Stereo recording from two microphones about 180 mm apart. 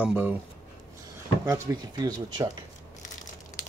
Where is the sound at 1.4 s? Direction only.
15° right (ahead or behind).